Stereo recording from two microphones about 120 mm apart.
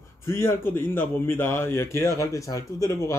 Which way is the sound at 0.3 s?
20° left (ahead or behind).